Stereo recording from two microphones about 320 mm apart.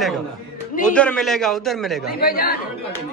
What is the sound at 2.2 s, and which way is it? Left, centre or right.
Speech, left.